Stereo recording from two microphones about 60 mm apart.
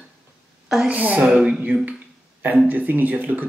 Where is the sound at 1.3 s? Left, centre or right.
Centre.